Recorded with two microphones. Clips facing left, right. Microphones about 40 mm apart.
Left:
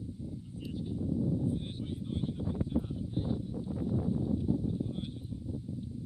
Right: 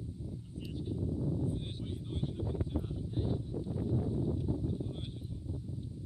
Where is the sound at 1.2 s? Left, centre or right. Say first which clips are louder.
Left 5 dB; centre.